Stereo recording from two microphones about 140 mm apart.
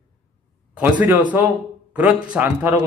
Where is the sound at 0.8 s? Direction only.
10° right (ahead or behind).